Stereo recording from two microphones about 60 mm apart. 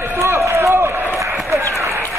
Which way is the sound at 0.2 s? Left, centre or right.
Right.